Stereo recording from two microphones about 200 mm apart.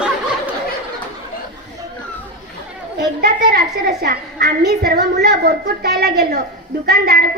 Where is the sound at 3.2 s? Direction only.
50° right (ahead or behind).